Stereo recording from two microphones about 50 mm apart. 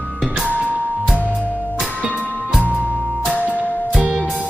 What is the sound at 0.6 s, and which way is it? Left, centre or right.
Music, centre.